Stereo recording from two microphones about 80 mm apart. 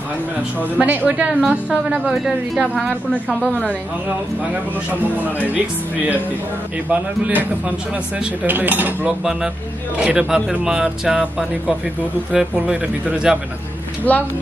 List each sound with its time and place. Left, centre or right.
0.6 s speech: right
2.0 s a woman's voice: centre
6.9 s speech: centre
8.5 s cutlery: right
9.2 s speech: centre
14.1 s speech: left